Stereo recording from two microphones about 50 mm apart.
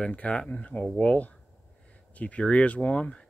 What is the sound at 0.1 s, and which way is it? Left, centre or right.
Speech, left.